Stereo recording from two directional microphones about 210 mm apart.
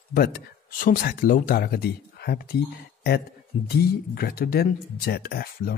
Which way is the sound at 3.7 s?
45° left (ahead or behind).